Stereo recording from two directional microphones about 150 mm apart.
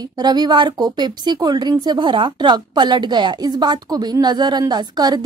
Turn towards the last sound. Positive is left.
turn(degrees=-25)  # may be behind; listen again after turning